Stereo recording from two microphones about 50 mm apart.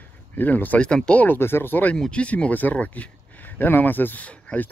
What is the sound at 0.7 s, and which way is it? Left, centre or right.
Speech, centre.